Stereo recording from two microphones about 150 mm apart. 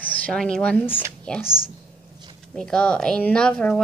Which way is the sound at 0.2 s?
5° left (ahead or behind).